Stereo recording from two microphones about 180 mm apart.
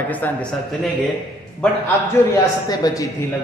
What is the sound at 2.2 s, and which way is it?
Speech, 15° left (ahead or behind).